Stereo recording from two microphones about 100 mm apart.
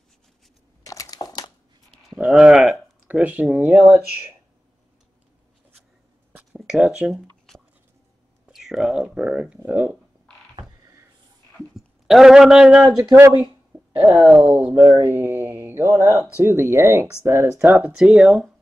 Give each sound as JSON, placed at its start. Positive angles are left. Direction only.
{"t": 0.8, "sound": "crumpling", "side_deg": 35}
{"t": 2.1, "sound": "speech", "side_deg": -10}
{"t": 3.8, "sound": "speech", "side_deg": -25}
{"t": 6.3, "sound": "a sound", "side_deg": -10}
{"t": 8.5, "sound": "speech", "side_deg": -5}
{"t": 10.8, "sound": "a sound", "side_deg": -30}
{"t": 11.7, "sound": "speech", "side_deg": -5}